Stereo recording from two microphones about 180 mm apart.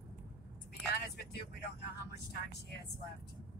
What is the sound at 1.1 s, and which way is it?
Speech, 65° left (ahead or behind).